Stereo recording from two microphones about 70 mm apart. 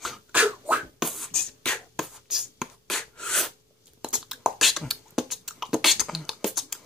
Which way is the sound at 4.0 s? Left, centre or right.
Centre.